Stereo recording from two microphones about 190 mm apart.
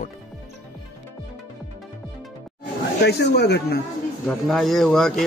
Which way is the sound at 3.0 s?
60° left (ahead or behind).